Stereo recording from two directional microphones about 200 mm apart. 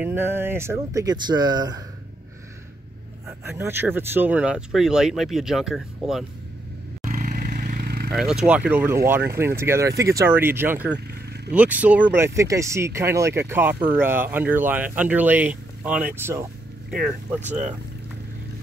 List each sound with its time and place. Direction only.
0.0 s speech: 10° right (ahead or behind)
3.3 s speech: 10° right (ahead or behind)
7.1 s motorcycle: 40° right (ahead or behind)
8.1 s speech: centre (ahead or behind)
11.1 s vehicle: 55° right (ahead or behind)
11.5 s speech: 5° right (ahead or behind)